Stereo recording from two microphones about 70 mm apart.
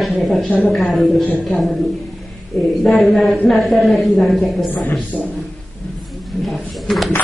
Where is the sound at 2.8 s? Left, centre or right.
Centre.